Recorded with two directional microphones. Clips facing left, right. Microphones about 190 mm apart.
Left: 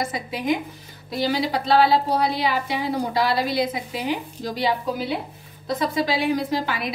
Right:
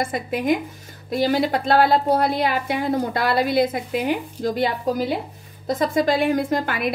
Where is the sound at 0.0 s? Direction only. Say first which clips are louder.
Right 3 dB; 50° right (ahead or behind).